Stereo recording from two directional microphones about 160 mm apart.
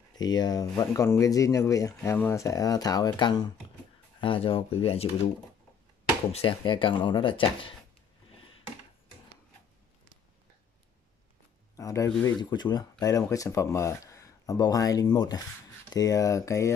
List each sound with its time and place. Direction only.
0.2 s speech: 25° left (ahead or behind)
6.3 s speech: 30° left (ahead or behind)
11.7 s speech: 20° left (ahead or behind)